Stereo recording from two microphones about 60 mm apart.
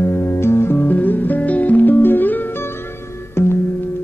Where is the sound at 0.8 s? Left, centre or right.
Left.